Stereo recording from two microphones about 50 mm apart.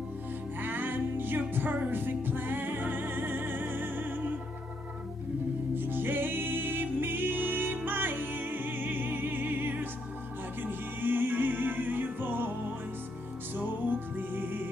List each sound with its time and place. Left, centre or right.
0.6 s music: right
5.8 s music: right
13.6 s music: right